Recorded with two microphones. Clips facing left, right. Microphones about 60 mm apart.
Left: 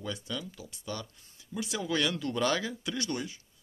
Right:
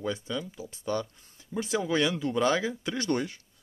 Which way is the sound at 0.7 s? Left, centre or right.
Right.